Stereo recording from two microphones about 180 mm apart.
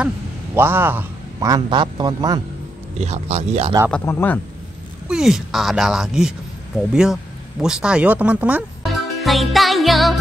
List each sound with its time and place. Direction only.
0.6 s a man's voice: 10° right (ahead or behind)
3.0 s speech: 35° right (ahead or behind)
3.9 s speech: 10° left (ahead or behind)
5.0 s speech: 5° right (ahead or behind)
7.6 s music: 5° right (ahead or behind)